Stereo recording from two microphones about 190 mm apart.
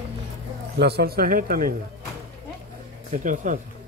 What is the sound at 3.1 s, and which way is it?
Speech, 40° right (ahead or behind).